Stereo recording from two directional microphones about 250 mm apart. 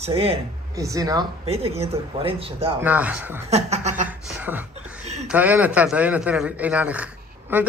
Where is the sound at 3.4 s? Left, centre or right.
Right.